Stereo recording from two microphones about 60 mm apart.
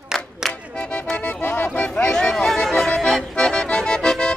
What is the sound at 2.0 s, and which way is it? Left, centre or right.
Music, centre.